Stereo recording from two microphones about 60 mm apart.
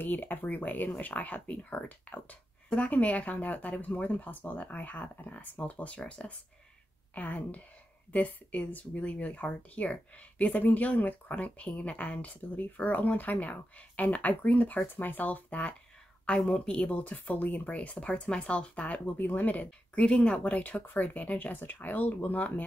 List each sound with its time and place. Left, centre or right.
0.0 s speech: left
17.7 s speech: centre